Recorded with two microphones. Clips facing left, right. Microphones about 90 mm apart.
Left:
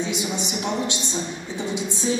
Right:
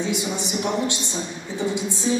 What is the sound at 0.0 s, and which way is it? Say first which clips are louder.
A man's voice: right 1 dB; 20° left (ahead or behind).